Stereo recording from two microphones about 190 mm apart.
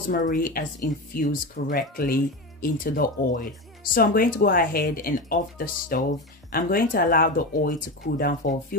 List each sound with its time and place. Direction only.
0.1 s speech: 45° left (ahead or behind)